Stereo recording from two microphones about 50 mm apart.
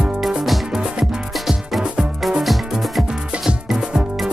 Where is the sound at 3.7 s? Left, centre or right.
Centre.